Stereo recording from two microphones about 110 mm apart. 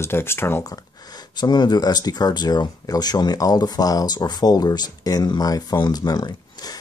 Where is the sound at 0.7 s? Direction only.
40° left (ahead or behind).